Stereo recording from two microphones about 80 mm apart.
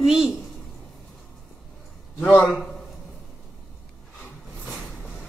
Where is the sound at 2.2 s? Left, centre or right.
Centre.